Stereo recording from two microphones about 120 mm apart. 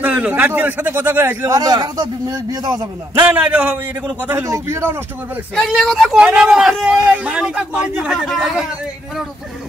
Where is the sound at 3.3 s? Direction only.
10° right (ahead or behind).